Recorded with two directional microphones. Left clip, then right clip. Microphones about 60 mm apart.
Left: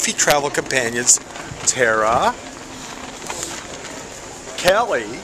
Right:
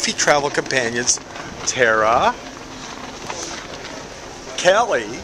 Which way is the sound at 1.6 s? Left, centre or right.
Centre.